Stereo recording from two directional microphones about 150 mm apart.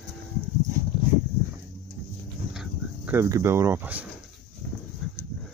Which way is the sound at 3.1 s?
15° right (ahead or behind).